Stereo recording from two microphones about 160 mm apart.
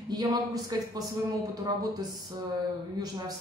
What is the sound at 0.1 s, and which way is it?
Speech, 25° right (ahead or behind).